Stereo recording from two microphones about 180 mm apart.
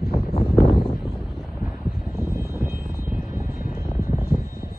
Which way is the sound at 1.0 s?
Centre (ahead or behind).